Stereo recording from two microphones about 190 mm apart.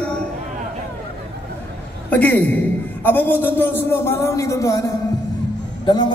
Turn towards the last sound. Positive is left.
turn(degrees=25)  # may be behind; listen again after turning